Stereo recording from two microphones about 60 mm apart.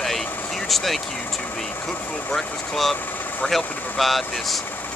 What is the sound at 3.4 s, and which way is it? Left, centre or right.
Speech, centre.